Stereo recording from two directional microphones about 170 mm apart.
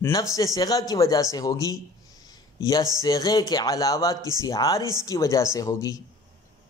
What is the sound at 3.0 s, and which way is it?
Speech, 20° left (ahead or behind).